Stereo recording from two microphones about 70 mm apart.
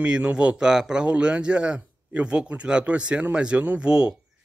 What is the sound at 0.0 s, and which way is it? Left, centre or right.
A man's voice, centre.